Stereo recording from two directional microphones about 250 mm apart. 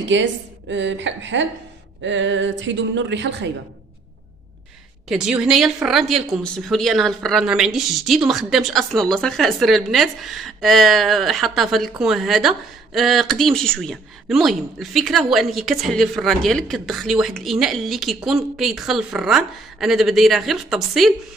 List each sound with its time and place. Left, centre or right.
0.1 s a woman's voice: right
5.0 s speech: centre